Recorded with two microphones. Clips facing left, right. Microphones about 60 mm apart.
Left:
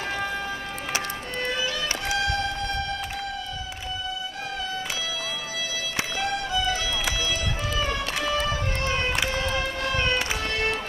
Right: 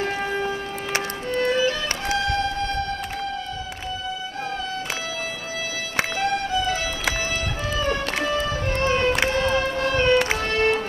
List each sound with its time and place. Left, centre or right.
0.0 s music: right
2.1 s music: right
5.9 s music: right
9.3 s vehicle: right
10.5 s music: right